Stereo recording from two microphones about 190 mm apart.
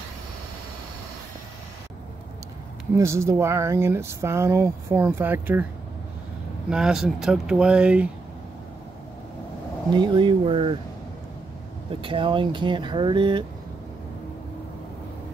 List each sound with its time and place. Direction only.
3.0 s speech: 15° right (ahead or behind)
6.7 s speech: 5° right (ahead or behind)
9.9 s speech: 25° right (ahead or behind)
12.0 s speech: 25° right (ahead or behind)